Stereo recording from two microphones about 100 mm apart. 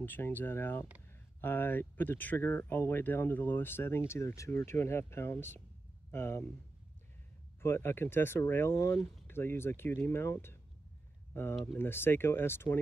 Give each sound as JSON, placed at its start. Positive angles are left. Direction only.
{"t": 0.0, "sound": "speech", "side_deg": 20}
{"t": 7.6, "sound": "speech", "side_deg": 25}
{"t": 11.6, "sound": "speech", "side_deg": 20}